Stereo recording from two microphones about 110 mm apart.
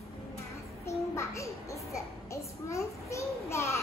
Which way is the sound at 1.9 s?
30° left (ahead or behind).